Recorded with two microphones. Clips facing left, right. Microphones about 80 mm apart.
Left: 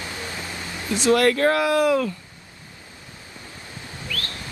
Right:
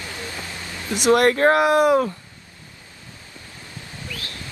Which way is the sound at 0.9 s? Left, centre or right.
Right.